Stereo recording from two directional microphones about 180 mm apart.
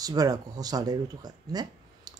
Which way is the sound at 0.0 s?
20° right (ahead or behind).